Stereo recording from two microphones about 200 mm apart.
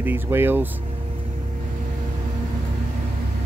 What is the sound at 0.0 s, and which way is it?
Speech, 10° right (ahead or behind).